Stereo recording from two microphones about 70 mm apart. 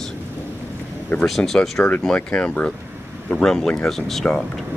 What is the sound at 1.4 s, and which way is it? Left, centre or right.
Speech, centre.